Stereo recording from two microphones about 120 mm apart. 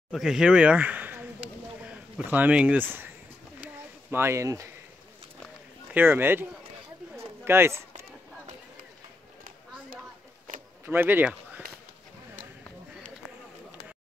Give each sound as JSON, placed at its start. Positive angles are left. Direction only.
{"t": 0.1, "sound": "a sound", "side_deg": -5}
{"t": 5.9, "sound": "speech", "side_deg": -15}
{"t": 7.4, "sound": "speech", "side_deg": -20}
{"t": 10.9, "sound": "speech", "side_deg": -15}